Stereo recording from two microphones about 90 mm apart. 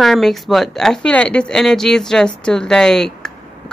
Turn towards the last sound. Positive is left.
turn(degrees=5)  # may be behind; listen again after turning